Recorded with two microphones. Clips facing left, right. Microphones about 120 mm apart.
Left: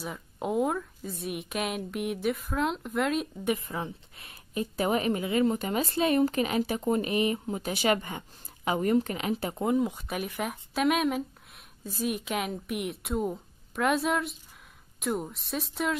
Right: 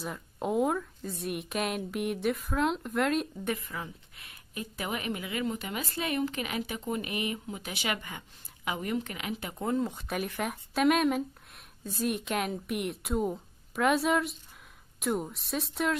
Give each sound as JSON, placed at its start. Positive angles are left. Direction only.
{"t": 0.0, "sound": "a woman's voice", "side_deg": 0}
{"t": 3.5, "sound": "a woman's voice", "side_deg": 30}
{"t": 9.8, "sound": "a woman's voice", "side_deg": 5}